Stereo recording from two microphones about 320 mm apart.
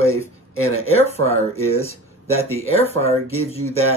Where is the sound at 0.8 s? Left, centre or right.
Centre.